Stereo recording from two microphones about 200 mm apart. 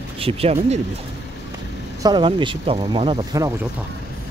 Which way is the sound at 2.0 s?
25° right (ahead or behind).